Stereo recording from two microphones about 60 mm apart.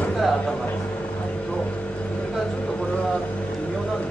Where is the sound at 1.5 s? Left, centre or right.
Left.